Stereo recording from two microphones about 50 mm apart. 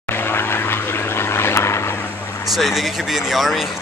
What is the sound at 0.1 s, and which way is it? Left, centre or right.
Vehicle, left.